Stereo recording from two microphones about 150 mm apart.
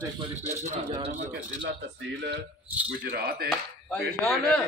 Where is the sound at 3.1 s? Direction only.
90° right.